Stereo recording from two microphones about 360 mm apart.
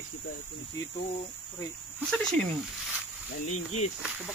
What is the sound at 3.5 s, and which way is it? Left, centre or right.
Speech, left.